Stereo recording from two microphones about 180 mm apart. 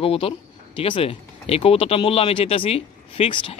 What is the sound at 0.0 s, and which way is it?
Speech, 30° left (ahead or behind).